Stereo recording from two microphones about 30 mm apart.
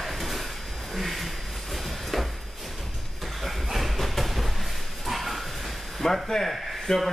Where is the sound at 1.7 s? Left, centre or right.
Centre.